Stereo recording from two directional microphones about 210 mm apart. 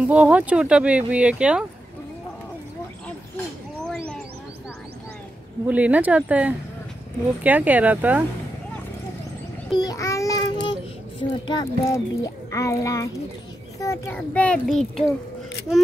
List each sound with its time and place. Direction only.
0.1 s speech: 5° right (ahead or behind)
5.7 s speech: 5° right (ahead or behind)
9.7 s child singing: 20° left (ahead or behind)
11.4 s a child's voice: 20° left (ahead or behind); by 15.0 s centre (ahead or behind)